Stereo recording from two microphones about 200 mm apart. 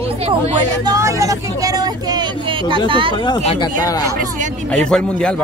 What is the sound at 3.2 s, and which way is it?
Speech, 25° left (ahead or behind).